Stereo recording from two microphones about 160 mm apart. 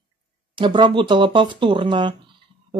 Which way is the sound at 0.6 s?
30° right (ahead or behind).